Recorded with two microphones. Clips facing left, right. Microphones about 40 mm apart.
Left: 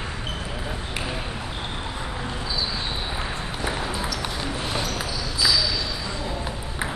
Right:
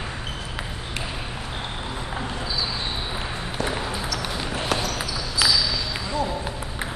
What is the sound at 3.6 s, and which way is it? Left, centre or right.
Ping, centre.